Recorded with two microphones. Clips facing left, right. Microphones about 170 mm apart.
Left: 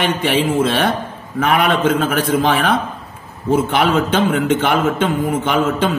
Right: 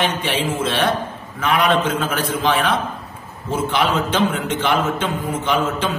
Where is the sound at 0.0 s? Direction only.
55° left (ahead or behind).